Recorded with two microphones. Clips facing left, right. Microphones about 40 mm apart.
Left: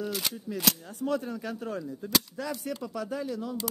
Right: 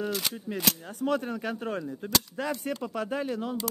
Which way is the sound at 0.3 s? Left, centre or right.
Centre.